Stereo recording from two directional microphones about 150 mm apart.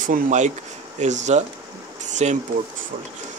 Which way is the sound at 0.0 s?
60° right (ahead or behind).